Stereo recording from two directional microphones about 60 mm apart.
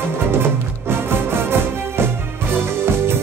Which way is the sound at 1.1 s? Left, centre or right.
Right.